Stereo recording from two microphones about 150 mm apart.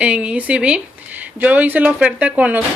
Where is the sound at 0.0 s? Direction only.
10° right (ahead or behind).